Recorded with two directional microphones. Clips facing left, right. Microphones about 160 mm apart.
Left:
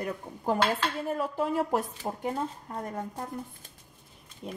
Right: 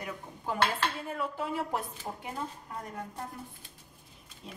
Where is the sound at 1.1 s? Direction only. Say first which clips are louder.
Left 5 dB; 40° left (ahead or behind).